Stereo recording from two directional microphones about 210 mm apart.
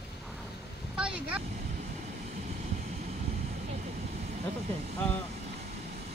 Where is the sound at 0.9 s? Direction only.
5° right (ahead or behind).